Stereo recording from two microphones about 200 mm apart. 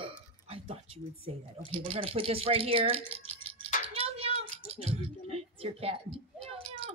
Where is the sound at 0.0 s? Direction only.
30° right (ahead or behind).